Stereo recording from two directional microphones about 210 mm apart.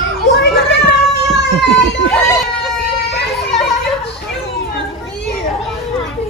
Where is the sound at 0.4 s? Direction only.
50° left (ahead or behind).